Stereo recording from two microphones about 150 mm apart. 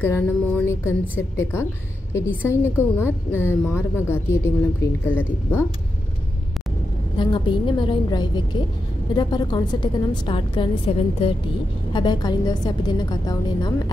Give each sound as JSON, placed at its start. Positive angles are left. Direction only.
{"t": 0.0, "sound": "a woman's voice", "side_deg": 15}
{"t": 7.2, "sound": "a woman's voice", "side_deg": 35}
{"t": 11.9, "sound": "a woman's voice", "side_deg": 30}